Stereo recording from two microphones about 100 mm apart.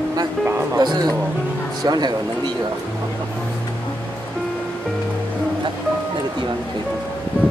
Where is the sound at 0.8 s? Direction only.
40° right (ahead or behind).